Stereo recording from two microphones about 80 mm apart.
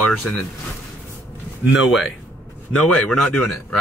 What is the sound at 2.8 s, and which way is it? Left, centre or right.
Speech, centre.